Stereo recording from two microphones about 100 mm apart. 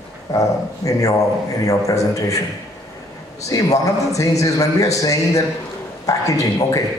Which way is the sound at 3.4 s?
35° left (ahead or behind).